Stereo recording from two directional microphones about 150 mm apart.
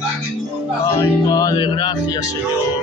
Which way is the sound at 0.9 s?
25° left (ahead or behind).